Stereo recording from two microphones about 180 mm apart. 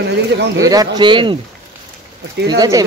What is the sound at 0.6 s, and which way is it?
Speech, 20° right (ahead or behind).